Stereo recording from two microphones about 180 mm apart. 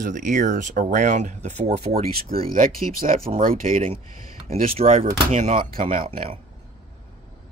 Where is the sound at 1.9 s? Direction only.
55° right (ahead or behind).